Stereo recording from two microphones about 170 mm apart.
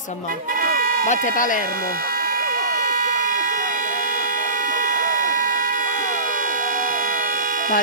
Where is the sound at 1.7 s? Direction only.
60° right (ahead or behind).